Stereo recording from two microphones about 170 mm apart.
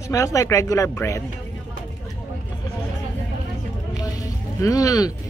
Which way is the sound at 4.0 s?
20° left (ahead or behind).